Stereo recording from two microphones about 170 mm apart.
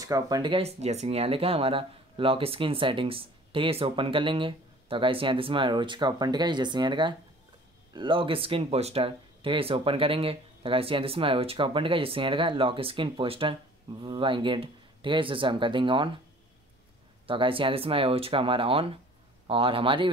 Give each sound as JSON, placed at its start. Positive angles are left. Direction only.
{"t": 0.0, "sound": "speech", "side_deg": -20}
{"t": 17.3, "sound": "speech", "side_deg": -30}